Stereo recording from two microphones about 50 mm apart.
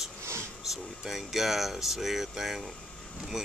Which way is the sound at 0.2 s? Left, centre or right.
Right.